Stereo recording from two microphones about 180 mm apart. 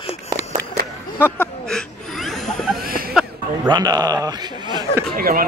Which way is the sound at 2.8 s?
55° right (ahead or behind).